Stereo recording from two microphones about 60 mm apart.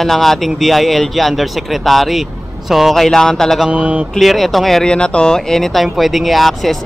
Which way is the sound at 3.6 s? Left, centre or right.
Right.